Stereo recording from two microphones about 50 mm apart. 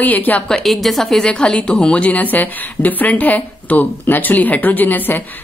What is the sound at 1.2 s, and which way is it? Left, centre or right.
A woman's voice, centre.